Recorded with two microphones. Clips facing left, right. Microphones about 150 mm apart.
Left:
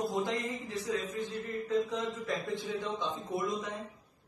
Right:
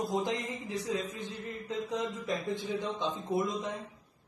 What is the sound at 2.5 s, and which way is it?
Speech, 20° right (ahead or behind).